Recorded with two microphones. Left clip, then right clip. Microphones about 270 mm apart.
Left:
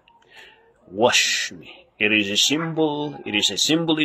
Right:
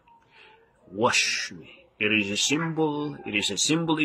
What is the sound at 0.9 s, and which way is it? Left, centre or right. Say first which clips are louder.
Speech: left 5 dB; centre.